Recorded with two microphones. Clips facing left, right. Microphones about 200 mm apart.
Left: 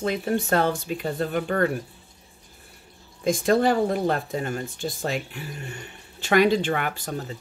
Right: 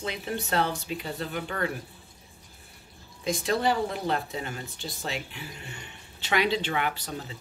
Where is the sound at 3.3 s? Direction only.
50° left (ahead or behind).